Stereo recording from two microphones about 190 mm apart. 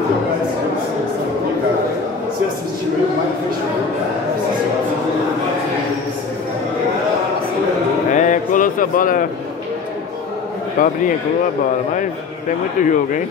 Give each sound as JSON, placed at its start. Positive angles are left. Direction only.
{"t": 8.1, "sound": "a sound", "side_deg": 40}
{"t": 10.8, "sound": "speech", "side_deg": 45}
{"t": 12.8, "sound": "speech", "side_deg": 40}